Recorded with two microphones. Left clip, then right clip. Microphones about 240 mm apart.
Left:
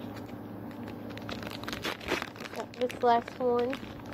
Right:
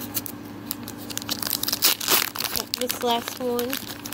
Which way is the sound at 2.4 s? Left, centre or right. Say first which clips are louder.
Right 6 dB; right.